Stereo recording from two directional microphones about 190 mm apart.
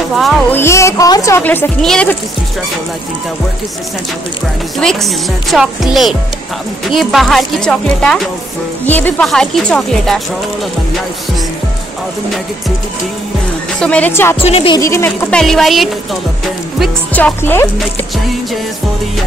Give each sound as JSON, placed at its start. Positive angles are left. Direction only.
{"t": 0.1, "sound": "speech", "side_deg": 0}
{"t": 0.6, "sound": "a woman's voice", "side_deg": 15}
{"t": 4.7, "sound": "speech", "side_deg": 0}
{"t": 13.7, "sound": "a woman's voice", "side_deg": 5}
{"t": 14.4, "sound": "speech", "side_deg": 30}
{"t": 14.8, "sound": "a woman's voice", "side_deg": 15}
{"t": 15.4, "sound": "a woman's voice", "side_deg": 0}